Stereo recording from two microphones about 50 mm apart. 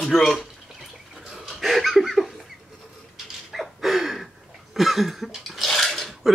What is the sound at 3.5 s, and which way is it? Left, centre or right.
Gasp, centre.